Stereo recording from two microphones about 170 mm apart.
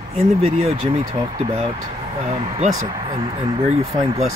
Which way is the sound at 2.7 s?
25° right (ahead or behind).